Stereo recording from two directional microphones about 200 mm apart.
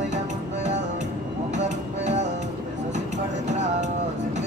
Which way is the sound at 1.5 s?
35° right (ahead or behind).